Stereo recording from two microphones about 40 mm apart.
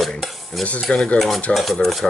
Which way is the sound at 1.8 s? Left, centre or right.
Left.